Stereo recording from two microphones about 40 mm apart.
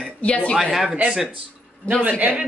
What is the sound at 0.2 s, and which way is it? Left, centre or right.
Speech, left.